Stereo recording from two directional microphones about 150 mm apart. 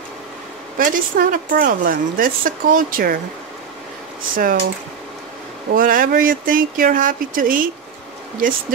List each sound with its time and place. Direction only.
0.7 s a woman's voice: 65° right (ahead or behind)
4.4 s a woman's voice: 70° right (ahead or behind)
5.8 s a woman's voice: 65° right (ahead or behind)